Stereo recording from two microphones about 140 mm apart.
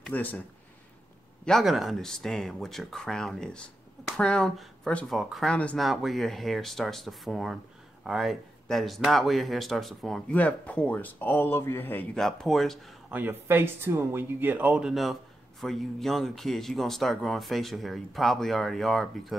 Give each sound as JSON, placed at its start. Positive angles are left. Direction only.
{"t": 0.1, "sound": "speech", "side_deg": 10}
{"t": 1.4, "sound": "speech", "side_deg": 0}
{"t": 13.1, "sound": "speech", "side_deg": -15}